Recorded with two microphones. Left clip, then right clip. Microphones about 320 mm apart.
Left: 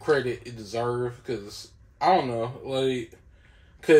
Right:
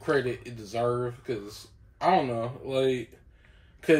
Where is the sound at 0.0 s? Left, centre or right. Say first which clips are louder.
Left 3 dB; centre.